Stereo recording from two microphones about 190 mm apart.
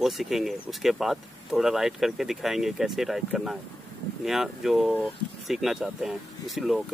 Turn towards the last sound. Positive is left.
turn(degrees=0)  # may be behind; listen again after turning